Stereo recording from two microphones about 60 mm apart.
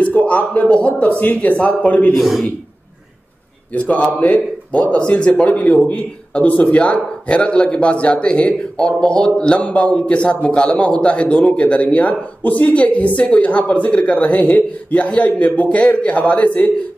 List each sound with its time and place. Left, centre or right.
0.0 s a man's voice: left
2.1 s a man's voice: centre
3.7 s a man's voice: centre